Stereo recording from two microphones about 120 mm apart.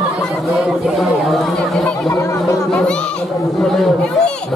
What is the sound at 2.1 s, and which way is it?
Chatter, 25° left (ahead or behind).